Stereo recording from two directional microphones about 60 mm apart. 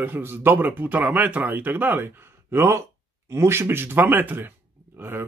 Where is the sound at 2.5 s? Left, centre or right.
Right.